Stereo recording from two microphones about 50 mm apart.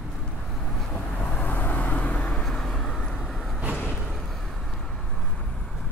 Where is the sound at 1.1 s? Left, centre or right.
Left.